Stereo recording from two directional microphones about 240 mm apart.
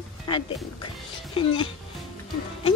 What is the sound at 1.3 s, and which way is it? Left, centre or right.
Speech, left.